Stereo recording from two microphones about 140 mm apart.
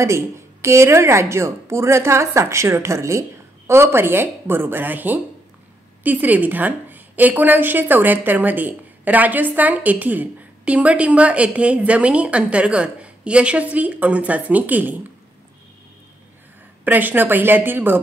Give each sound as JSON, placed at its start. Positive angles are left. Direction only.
{"t": 0.0, "sound": "a woman's voice", "side_deg": -20}
{"t": 16.8, "sound": "a woman's voice", "side_deg": -15}